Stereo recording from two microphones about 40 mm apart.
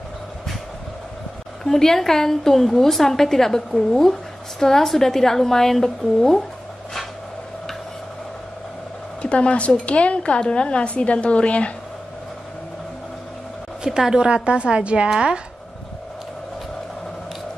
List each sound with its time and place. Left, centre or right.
1.6 s a woman's voice: centre
9.2 s a woman's voice: left
13.8 s a woman's voice: centre